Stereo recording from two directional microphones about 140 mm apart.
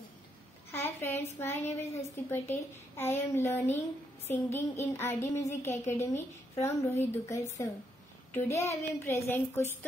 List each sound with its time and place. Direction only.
0.7 s a woman's voice: 15° left (ahead or behind)